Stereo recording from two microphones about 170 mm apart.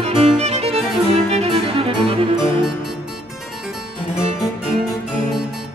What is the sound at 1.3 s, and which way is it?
Music, 35° right (ahead or behind).